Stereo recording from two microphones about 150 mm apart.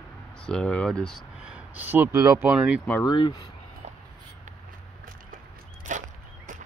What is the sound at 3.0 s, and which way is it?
Speech, 30° left (ahead or behind).